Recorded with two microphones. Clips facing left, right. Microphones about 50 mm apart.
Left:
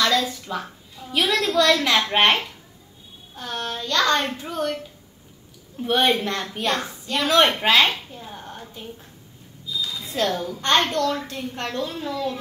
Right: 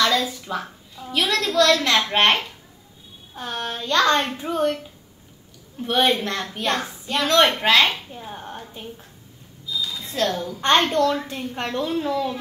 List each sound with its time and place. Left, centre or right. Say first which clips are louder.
0.0 s a woman's voice: right 1 dB; centre
3.3 s a woman's voice: right 1 dB; centre
5.8 s a woman's voice: even; centre
7.9 s speech: right 1 dB; centre
9.8 s a woman's voice: even; centre
10.6 s speech: right 3 dB; centre